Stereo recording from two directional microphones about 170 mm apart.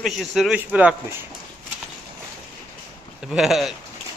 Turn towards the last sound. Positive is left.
turn(degrees=0)  # may be behind; listen again after turning